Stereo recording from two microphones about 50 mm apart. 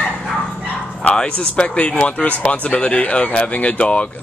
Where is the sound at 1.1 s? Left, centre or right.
Centre.